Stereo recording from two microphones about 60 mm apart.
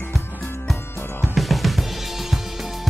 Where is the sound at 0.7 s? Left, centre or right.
Left.